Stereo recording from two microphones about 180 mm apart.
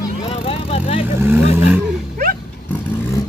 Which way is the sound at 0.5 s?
35° left (ahead or behind).